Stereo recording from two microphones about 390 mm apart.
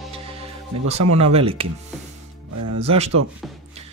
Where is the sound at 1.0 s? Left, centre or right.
Right.